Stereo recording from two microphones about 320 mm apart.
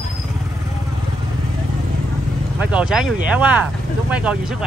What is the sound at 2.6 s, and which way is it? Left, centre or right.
Speech, centre.